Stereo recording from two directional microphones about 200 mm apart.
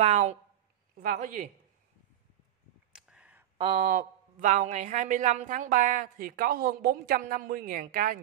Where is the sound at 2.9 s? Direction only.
5° right (ahead or behind).